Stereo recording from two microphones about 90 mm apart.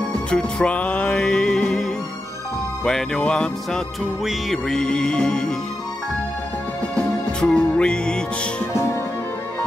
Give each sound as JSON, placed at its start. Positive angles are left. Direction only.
{"t": 0.1, "sound": "music", "side_deg": 10}
{"t": 4.2, "sound": "music", "side_deg": -5}
{"t": 4.6, "sound": "music", "side_deg": 10}
{"t": 7.0, "sound": "music", "side_deg": 10}
{"t": 8.7, "sound": "music", "side_deg": 30}